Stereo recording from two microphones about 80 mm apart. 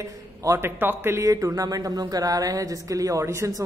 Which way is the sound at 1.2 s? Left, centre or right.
Right.